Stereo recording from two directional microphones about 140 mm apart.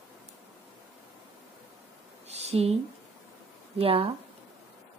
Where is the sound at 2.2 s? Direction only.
50° right (ahead or behind).